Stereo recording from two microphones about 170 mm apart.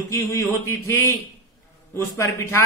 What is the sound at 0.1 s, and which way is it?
A man's voice, 15° left (ahead or behind).